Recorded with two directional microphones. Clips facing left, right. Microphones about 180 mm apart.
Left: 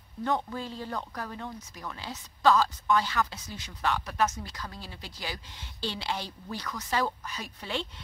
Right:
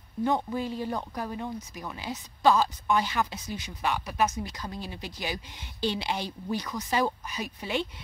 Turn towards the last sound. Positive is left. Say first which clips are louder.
# right 4 dB
turn(degrees=-10)  # may be behind; listen again after turning